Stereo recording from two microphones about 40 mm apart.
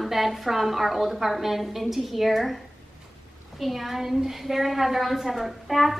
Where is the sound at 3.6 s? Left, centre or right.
Centre.